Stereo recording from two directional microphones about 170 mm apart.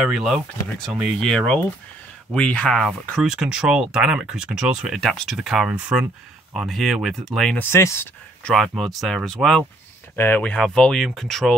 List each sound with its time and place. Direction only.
0.1 s speech: centre (ahead or behind)
7.7 s speech: 15° left (ahead or behind)
8.5 s speech: centre (ahead or behind)